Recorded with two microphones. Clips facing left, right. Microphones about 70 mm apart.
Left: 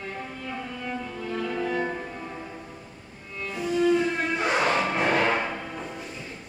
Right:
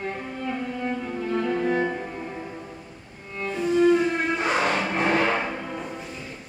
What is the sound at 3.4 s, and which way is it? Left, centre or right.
Music, right.